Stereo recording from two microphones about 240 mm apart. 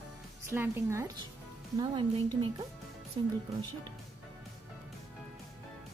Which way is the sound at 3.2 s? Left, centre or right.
Right.